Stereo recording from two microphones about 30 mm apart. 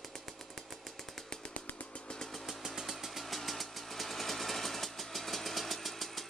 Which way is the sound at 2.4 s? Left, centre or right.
Centre.